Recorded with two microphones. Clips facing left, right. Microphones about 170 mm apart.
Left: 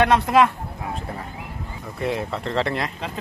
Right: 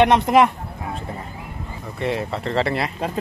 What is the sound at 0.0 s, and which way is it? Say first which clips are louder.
Speech: right 2 dB; 20° right (ahead or behind).